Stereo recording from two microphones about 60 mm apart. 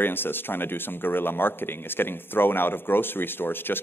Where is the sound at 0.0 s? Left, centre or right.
Left.